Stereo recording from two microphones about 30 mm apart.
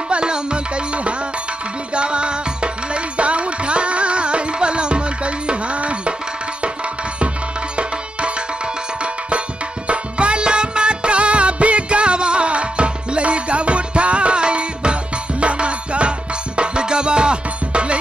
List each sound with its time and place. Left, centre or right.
0.1 s music: right
2.0 s music: right
9.8 s music: right